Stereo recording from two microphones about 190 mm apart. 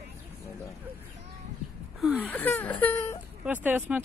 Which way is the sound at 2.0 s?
10° right (ahead or behind).